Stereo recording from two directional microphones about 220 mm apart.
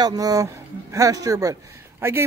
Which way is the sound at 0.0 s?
15° right (ahead or behind).